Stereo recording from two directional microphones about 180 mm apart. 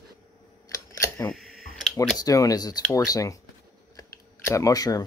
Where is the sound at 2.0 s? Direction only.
20° left (ahead or behind).